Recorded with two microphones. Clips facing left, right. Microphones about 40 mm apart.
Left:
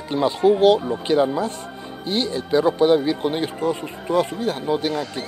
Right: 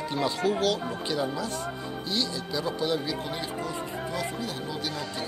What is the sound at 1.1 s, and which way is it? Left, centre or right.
Speech, left.